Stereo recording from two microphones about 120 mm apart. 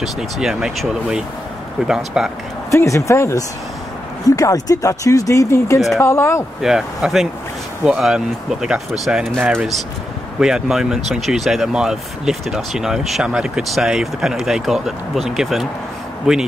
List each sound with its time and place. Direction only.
0.0 s speech: 5° right (ahead or behind)
2.7 s speech: 25° left (ahead or behind)
6.6 s speech: 5° right (ahead or behind)
10.4 s speech: 5° right (ahead or behind)